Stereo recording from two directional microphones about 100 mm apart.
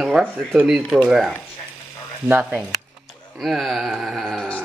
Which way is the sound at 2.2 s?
20° right (ahead or behind).